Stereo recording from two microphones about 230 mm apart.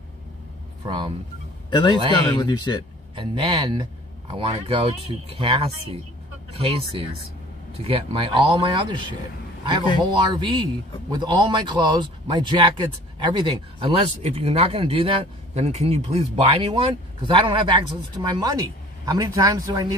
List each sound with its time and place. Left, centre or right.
0.8 s a man's voice: right
1.7 s a man's voice: centre
3.2 s a man's voice: centre
10.3 s a man's voice: right